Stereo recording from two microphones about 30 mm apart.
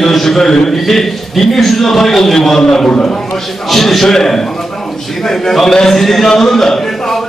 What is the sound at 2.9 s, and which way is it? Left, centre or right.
Speech, left.